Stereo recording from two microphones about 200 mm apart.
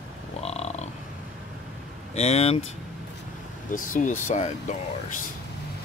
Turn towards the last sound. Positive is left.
turn(degrees=35)  # may be behind; listen again after turning